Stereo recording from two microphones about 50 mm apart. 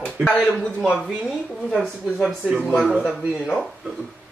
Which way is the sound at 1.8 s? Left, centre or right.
Centre.